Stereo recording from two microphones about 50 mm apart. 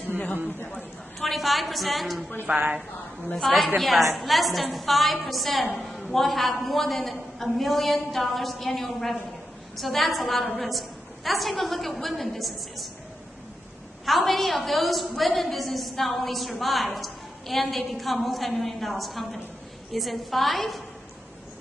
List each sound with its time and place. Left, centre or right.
1.2 s a woman's voice: centre
2.4 s speech: right
3.3 s a woman's voice: centre
14.0 s a woman's voice: centre